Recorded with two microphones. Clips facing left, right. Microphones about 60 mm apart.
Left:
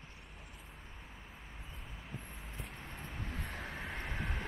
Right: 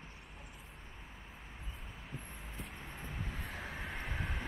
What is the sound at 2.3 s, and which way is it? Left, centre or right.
Vehicle, centre.